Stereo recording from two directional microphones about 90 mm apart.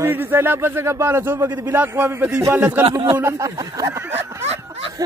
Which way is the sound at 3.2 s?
35° right (ahead or behind).